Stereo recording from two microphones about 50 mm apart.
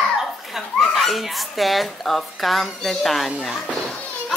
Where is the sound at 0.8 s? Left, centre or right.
Centre.